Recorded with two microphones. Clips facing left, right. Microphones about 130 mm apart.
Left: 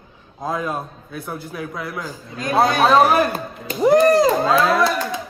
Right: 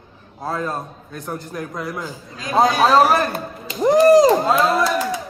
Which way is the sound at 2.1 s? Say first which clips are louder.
Left 4 dB; 55° left (ahead or behind).